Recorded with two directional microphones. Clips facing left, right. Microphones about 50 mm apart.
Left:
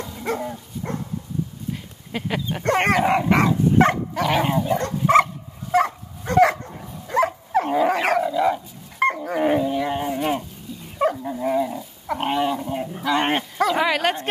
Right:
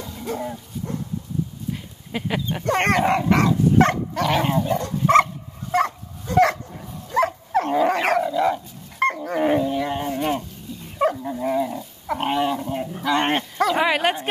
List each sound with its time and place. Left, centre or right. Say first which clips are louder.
1.7 s dog: right 1 dB; centre
2.7 s speech: left 1 dB; centre
5.0 s dog: right 1 dB; centre
6.3 s dog: even; left
7.2 s dog: even; centre
13.7 s bow-wow: right 1 dB; centre